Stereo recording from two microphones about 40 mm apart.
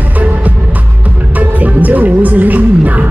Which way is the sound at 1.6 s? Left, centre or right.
Right.